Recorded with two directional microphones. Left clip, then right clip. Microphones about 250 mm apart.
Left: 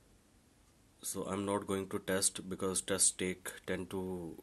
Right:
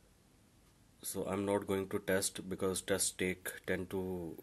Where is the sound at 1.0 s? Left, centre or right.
Centre.